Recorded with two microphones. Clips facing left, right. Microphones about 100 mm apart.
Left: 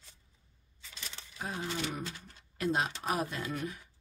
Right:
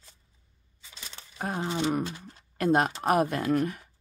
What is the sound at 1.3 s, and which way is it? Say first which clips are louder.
Speech: right 7 dB; 50° right (ahead or behind).